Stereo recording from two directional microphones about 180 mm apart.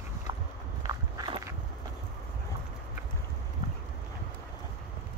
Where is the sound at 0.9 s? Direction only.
25° right (ahead or behind).